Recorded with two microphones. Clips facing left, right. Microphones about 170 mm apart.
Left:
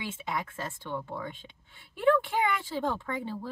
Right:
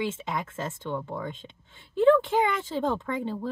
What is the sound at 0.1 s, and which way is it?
Speech, 20° right (ahead or behind).